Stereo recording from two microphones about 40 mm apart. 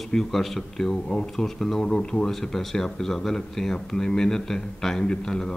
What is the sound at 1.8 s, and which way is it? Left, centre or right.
Speech, centre.